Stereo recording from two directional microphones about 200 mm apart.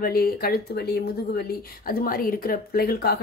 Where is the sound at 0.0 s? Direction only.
50° left (ahead or behind).